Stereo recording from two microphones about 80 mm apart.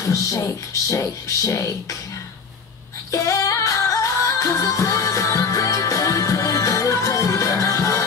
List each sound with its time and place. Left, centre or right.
0.0 s speech: left
3.1 s music: left